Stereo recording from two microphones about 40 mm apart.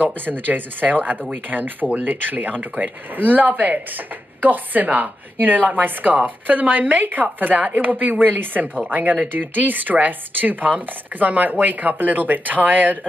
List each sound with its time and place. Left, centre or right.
0.0 s speech: right